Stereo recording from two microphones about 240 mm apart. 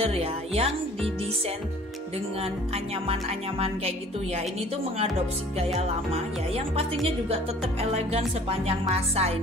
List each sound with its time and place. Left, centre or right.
0.0 s music: right
2.4 s music: right
5.6 s music: right
8.5 s music: right